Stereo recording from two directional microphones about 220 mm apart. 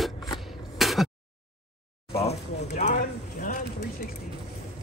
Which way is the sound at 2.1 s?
30° left (ahead or behind).